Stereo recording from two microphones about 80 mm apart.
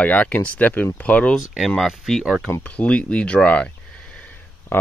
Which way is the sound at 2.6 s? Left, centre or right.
Centre.